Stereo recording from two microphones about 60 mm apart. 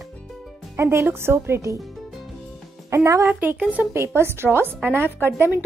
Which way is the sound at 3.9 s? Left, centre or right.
Right.